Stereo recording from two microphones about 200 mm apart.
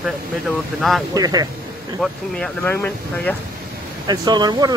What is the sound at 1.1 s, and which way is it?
Speech, 20° right (ahead or behind).